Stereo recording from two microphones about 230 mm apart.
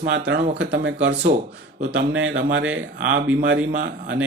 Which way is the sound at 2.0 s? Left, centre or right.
Right.